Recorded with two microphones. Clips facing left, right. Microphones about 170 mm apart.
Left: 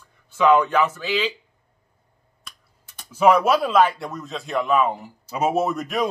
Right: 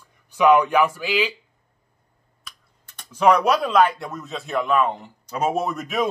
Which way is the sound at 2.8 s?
5° left (ahead or behind).